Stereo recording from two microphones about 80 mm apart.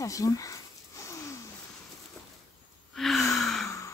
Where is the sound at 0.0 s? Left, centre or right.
Left.